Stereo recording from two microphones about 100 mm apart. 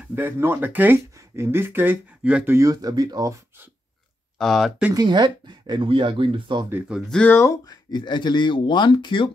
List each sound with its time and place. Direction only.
0.1 s speech: 20° right (ahead or behind)
2.5 s speech: 35° right (ahead or behind)
4.4 s speech: centre (ahead or behind)
4.9 s speech: 50° right (ahead or behind)
7.4 s speech: 40° left (ahead or behind); by 9.3 s 55° left (ahead or behind)